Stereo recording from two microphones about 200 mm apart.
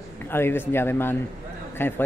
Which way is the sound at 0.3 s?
10° left (ahead or behind).